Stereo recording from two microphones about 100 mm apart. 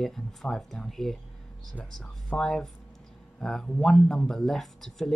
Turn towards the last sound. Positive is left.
turn(degrees=5)  # may be behind; listen again after turning